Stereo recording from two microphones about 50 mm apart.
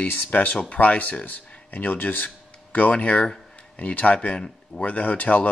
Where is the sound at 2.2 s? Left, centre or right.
Left.